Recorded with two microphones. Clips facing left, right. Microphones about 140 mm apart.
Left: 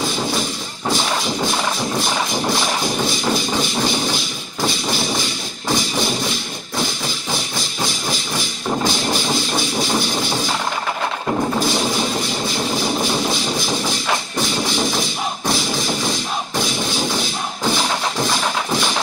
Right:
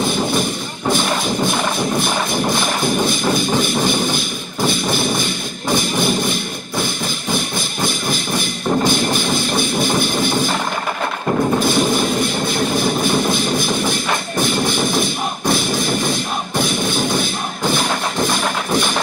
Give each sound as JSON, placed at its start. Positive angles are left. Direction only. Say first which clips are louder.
{"t": 0.0, "sound": "artillery fire", "louder": "right 4 dB", "side_deg": -55}
{"t": 0.9, "sound": "music", "louder": "right 2 dB", "side_deg": -55}
{"t": 7.3, "sound": "music", "louder": "right 3 dB", "side_deg": -55}
{"t": 11.6, "sound": "a sound", "louder": "right 4 dB", "side_deg": -55}
{"t": 14.4, "sound": "music", "louder": "right 5 dB", "side_deg": -55}
{"t": 18.3, "sound": "music", "louder": "right 2 dB", "side_deg": -55}